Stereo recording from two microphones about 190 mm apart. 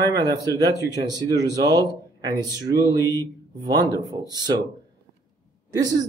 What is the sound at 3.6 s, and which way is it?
Speech, 20° right (ahead or behind).